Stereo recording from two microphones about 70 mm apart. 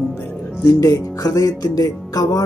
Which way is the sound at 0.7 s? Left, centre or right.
Left.